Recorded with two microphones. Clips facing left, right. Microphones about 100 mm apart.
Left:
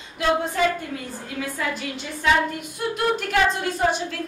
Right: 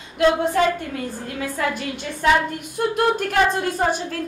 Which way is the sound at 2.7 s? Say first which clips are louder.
Right 5 dB; 45° right (ahead or behind).